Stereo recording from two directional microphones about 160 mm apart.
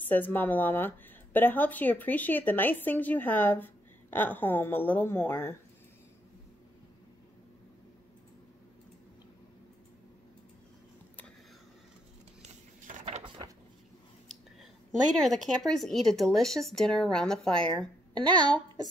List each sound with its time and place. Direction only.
0.0 s a woman's voice: 10° left (ahead or behind)
12.4 s a sound: 45° right (ahead or behind)
14.3 s speech: centre (ahead or behind)
18.1 s a woman's voice: 30° right (ahead or behind)